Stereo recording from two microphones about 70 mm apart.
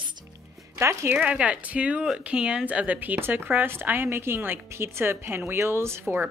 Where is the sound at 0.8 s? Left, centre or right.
Right.